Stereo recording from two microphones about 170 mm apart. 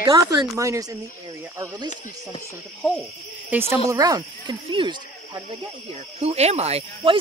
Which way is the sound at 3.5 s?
10° right (ahead or behind).